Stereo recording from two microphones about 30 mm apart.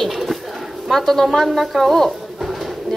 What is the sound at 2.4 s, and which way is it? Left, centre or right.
Drawer open or close, centre.